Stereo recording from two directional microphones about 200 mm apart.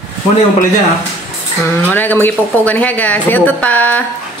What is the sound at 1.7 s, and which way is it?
Speech, 10° left (ahead or behind).